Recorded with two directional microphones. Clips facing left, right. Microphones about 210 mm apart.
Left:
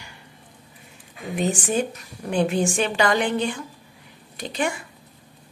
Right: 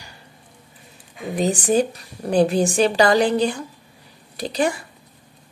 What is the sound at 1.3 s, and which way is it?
A woman's voice, 35° right (ahead or behind).